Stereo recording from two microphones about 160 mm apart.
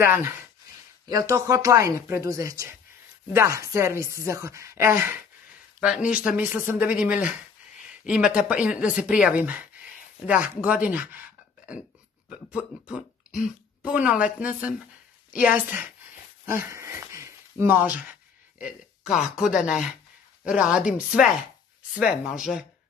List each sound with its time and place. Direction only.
0.0 s speech: 15° right (ahead or behind)
12.3 s speech: 5° right (ahead or behind)
16.4 s dog: 15° right (ahead or behind)
17.1 s a sound: 15° right (ahead or behind)
19.2 s speech: 5° right (ahead or behind)
21.9 s speech: 5° right (ahead or behind)